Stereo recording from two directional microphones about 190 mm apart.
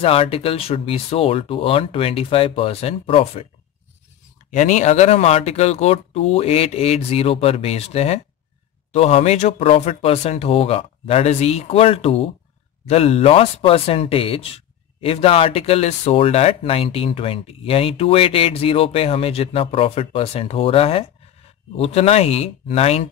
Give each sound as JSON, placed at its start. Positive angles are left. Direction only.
{"t": 0.0, "sound": "speech", "side_deg": 30}
{"t": 4.5, "sound": "speech", "side_deg": 40}